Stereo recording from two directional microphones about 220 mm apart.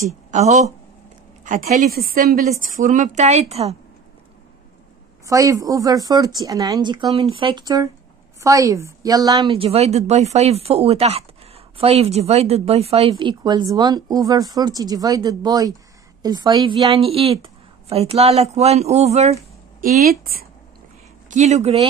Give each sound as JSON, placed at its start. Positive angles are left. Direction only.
{"t": 0.3, "sound": "a woman's voice", "side_deg": -30}
{"t": 5.2, "sound": "a woman's voice", "side_deg": -15}
{"t": 19.8, "sound": "speech", "side_deg": -45}
{"t": 21.3, "sound": "a woman's voice", "side_deg": -30}